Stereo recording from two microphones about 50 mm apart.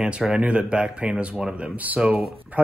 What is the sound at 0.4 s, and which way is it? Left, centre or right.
Speech, right.